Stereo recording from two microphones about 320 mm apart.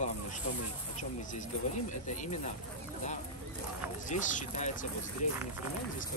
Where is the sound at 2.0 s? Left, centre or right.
Left.